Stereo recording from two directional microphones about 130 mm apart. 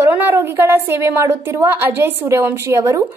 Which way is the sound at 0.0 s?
15° right (ahead or behind).